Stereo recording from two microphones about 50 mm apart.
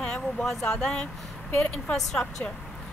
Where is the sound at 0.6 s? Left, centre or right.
Centre.